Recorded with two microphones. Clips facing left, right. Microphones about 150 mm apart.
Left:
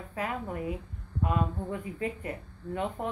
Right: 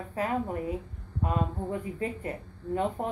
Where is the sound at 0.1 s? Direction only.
35° right (ahead or behind).